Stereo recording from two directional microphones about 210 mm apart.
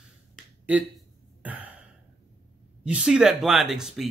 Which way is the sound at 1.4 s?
5° right (ahead or behind).